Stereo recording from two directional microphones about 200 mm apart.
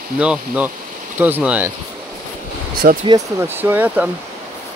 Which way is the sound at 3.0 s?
15° right (ahead or behind).